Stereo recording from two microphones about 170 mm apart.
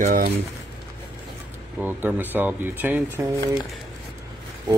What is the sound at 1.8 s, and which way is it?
Speech, 10° right (ahead or behind).